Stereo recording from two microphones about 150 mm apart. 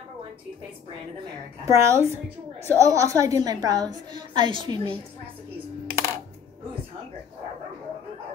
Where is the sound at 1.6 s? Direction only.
20° right (ahead or behind).